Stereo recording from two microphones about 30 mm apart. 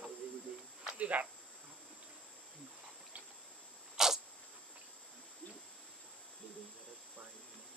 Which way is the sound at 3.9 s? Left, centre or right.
Centre.